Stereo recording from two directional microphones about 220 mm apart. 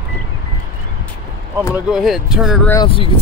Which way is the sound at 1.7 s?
Centre (ahead or behind).